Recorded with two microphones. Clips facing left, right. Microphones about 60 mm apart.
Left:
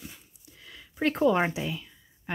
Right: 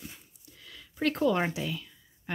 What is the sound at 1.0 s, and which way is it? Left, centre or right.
Speech, left.